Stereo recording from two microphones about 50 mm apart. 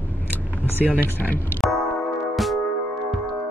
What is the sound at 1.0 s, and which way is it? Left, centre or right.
Speech, left.